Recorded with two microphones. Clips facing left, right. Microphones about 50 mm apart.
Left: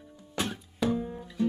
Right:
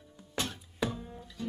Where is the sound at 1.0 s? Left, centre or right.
Left.